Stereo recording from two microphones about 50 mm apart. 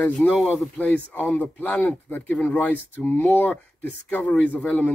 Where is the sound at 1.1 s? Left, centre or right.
Left.